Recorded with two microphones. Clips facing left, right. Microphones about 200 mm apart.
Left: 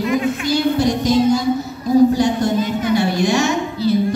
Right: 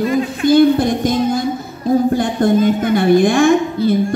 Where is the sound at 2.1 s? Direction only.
55° right (ahead or behind).